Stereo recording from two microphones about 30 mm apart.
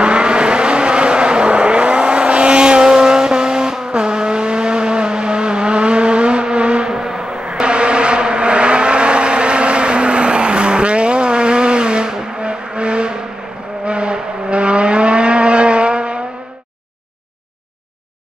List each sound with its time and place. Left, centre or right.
0.0 s vehicle: right
6.9 s a sound: right
7.4 s vehicle: right